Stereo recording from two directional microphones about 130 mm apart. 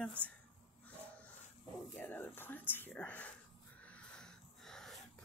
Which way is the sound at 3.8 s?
10° left (ahead or behind).